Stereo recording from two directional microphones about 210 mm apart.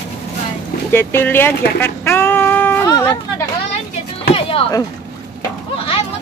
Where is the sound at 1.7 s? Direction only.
10° left (ahead or behind).